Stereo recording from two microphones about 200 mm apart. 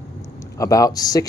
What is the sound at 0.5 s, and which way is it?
Speech, 15° left (ahead or behind).